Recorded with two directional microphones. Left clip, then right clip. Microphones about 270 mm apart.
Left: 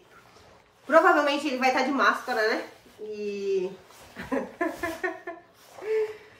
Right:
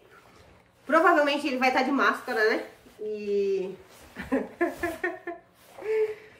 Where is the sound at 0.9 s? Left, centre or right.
Centre.